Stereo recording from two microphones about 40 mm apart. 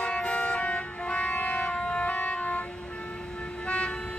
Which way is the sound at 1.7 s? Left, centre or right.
Left.